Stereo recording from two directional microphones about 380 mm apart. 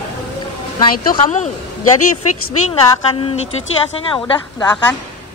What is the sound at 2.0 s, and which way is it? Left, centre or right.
Speech, left.